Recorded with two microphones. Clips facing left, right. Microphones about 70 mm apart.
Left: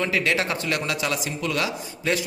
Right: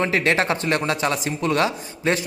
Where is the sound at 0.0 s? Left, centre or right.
Right.